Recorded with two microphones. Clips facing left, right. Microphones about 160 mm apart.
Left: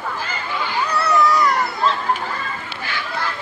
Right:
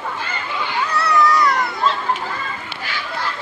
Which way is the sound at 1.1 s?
Centre (ahead or behind).